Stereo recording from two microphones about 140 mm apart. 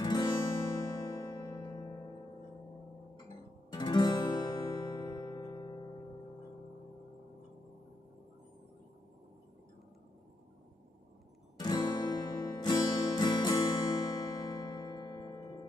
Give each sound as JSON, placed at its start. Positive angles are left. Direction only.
{"t": 0.0, "sound": "music", "side_deg": 30}
{"t": 3.7, "sound": "music", "side_deg": 30}
{"t": 11.5, "sound": "music", "side_deg": 30}